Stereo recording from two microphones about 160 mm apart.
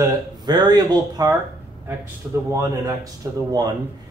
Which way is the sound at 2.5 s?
20° right (ahead or behind).